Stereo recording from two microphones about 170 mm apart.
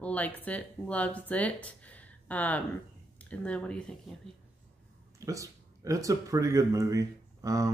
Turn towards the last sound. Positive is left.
turn(degrees=-20)  # may be behind; listen again after turning